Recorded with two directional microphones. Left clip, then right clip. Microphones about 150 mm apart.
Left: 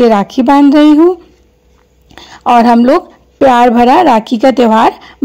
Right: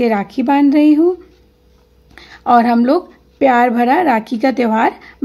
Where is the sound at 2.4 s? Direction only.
30° left (ahead or behind).